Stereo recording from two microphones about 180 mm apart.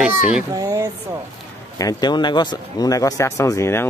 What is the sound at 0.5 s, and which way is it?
Speech, 20° right (ahead or behind).